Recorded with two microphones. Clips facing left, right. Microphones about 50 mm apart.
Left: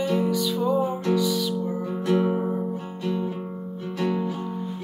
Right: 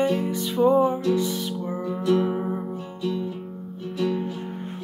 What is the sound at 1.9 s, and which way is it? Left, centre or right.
Music, left.